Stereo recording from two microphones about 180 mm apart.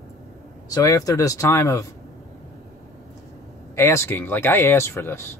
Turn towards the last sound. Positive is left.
turn(degrees=15)  # may be behind; listen again after turning